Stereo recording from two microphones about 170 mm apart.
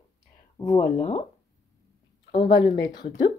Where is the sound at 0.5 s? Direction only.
20° left (ahead or behind).